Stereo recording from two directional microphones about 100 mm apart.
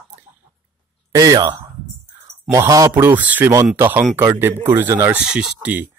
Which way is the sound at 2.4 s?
30° right (ahead or behind).